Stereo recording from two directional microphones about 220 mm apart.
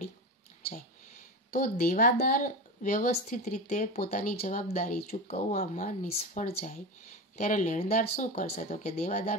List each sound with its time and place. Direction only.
1.8 s speech: 40° left (ahead or behind)